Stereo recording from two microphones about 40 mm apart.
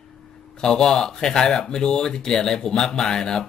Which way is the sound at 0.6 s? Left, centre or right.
Centre.